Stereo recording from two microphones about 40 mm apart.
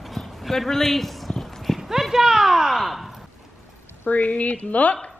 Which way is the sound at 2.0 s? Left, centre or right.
Centre.